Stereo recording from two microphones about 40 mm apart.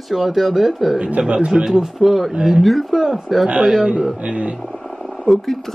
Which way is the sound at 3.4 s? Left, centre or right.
Right.